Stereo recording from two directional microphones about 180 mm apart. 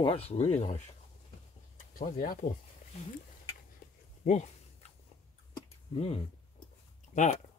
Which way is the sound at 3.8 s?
50° left (ahead or behind).